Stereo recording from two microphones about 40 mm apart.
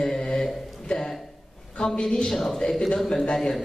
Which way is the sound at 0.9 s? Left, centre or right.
Centre.